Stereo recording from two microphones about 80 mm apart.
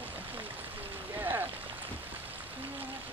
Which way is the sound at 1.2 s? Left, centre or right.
Right.